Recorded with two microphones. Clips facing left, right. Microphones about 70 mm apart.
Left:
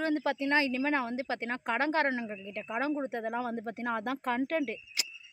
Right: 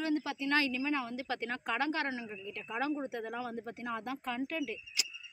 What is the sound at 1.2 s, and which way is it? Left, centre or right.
Speech, left.